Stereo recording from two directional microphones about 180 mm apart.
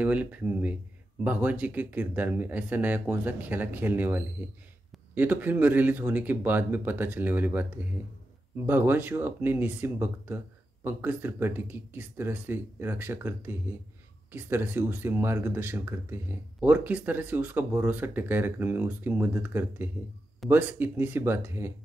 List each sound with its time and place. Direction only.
0.0 s speech: 10° right (ahead or behind)